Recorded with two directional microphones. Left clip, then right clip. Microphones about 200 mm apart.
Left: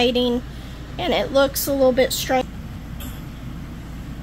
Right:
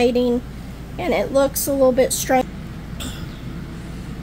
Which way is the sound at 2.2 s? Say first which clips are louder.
Right 3 dB; 25° right (ahead or behind).